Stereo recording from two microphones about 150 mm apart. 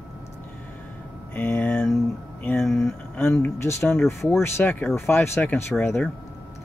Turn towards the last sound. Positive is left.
turn(degrees=15)  # may be behind; listen again after turning